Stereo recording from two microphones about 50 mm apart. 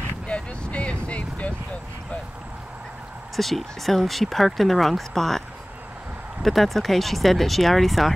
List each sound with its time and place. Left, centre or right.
0.3 s vehicle: left
3.3 s speech: centre
6.4 s speech: centre